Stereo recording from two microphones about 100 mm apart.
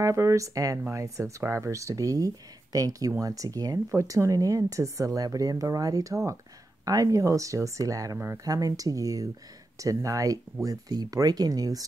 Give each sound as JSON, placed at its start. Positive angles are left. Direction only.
{"t": 0.0, "sound": "speech", "side_deg": -30}